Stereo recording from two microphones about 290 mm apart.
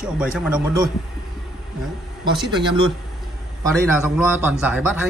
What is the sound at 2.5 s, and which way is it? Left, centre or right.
Speech, centre.